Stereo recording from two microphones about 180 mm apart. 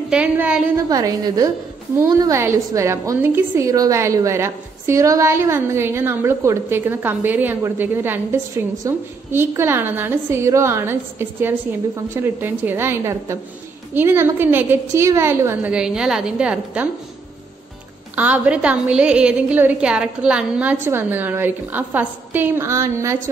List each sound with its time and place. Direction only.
0.1 s a woman's voice: 5° right (ahead or behind)
0.7 s a woman's voice: 20° right (ahead or behind)
18.1 s a woman's voice: 10° right (ahead or behind)